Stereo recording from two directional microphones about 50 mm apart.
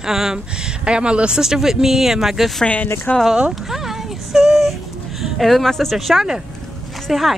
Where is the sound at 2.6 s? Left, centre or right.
Left.